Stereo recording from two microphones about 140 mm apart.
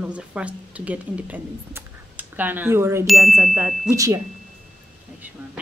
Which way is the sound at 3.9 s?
25° right (ahead or behind).